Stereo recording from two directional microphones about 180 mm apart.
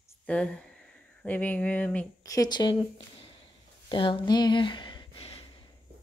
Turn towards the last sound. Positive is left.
turn(degrees=30)  # may be behind; listen again after turning